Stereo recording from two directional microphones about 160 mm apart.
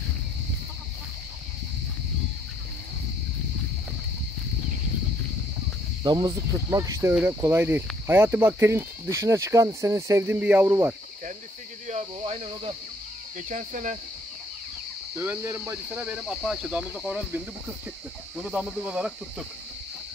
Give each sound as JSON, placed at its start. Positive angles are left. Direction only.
{"t": 6.0, "sound": "cricket", "side_deg": -25}
{"t": 11.9, "sound": "speech", "side_deg": -45}
{"t": 13.4, "sound": "speech", "side_deg": -50}
{"t": 15.1, "sound": "cricket", "side_deg": -15}
{"t": 18.3, "sound": "speech", "side_deg": -5}